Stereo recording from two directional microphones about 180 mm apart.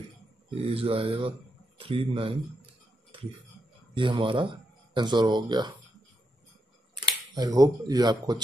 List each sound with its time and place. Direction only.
0.6 s speech: 30° right (ahead or behind)
1.8 s a sound: 30° right (ahead or behind)
3.9 s speech: 30° right (ahead or behind)
7.3 s speech: 20° right (ahead or behind)